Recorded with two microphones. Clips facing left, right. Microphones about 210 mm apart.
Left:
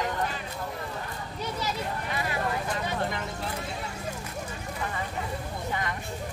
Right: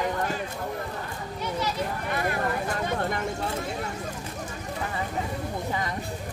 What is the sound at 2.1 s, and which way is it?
Vehicle, 50° right (ahead or behind).